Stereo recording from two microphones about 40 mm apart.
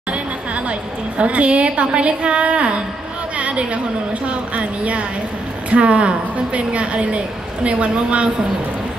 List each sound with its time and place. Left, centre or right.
0.7 s a woman's voice: right
3.3 s chatter: right
4.3 s a woman's voice: right